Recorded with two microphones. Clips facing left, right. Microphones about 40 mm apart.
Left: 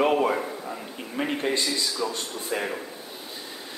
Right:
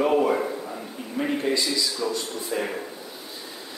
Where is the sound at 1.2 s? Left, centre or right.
Centre.